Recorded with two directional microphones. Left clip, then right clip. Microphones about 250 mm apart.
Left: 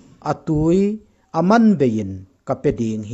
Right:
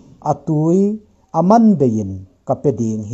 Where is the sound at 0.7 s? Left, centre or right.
Left.